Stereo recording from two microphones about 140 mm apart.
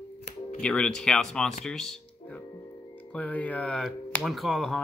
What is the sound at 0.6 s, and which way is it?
Speech, 5° left (ahead or behind).